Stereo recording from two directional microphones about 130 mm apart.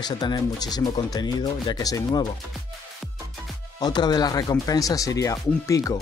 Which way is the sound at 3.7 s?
30° left (ahead or behind).